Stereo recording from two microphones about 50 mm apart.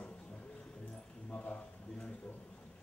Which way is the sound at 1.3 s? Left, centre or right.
Left.